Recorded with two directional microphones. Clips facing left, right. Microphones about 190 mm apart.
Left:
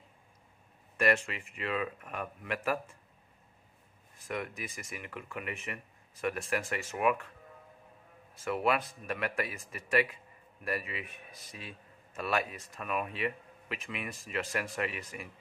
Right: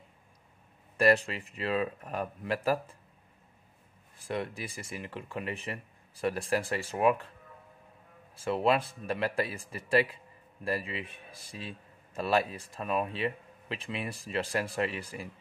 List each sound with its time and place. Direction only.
0.9 s speech: 35° right (ahead or behind)
4.3 s speech: 30° right (ahead or behind)
8.4 s speech: 30° right (ahead or behind)